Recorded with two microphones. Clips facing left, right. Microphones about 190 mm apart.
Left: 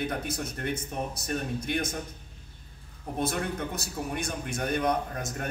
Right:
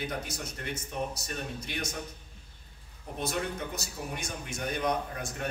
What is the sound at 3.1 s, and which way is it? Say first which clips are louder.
Speech: left 3 dB; 55° left (ahead or behind).